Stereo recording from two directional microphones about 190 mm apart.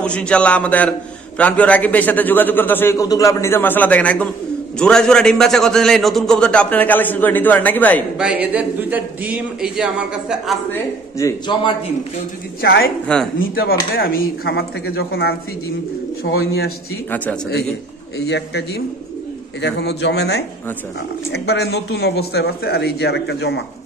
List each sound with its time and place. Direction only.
0.0 s a man's voice: 5° left (ahead or behind)
8.2 s a man's voice: 5° right (ahead or behind)
10.7 s a man's voice: 15° left (ahead or behind)
12.6 s a man's voice: 55° left (ahead or behind)
16.3 s a man's voice: 90° left
18.2 s a man's voice: 60° left (ahead or behind)
19.6 s a man's voice: 65° left (ahead or behind)